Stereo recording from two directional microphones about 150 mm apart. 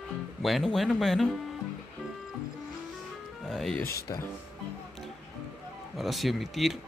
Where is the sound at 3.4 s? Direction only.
5° left (ahead or behind).